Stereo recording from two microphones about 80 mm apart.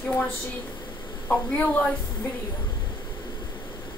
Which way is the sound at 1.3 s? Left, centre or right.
Centre.